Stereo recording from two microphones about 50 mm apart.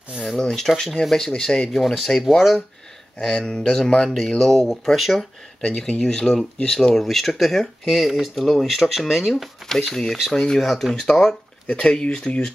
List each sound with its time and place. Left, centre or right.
0.2 s speech: centre
1.7 s speech: centre
5.6 s speech: centre
11.6 s speech: left